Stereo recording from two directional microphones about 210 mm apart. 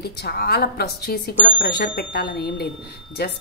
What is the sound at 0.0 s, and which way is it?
Speech, 50° left (ahead or behind).